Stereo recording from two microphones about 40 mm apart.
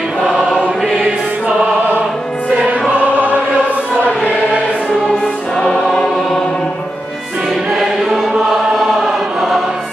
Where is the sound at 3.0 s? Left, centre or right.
Right.